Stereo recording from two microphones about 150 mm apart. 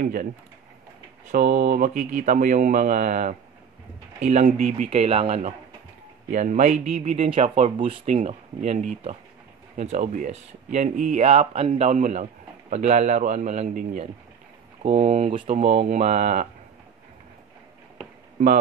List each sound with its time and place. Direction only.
0.0 s speech: 70° right (ahead or behind)
1.3 s speech: 50° right (ahead or behind)
6.3 s speech: 55° right (ahead or behind)
14.8 s speech: 40° right (ahead or behind)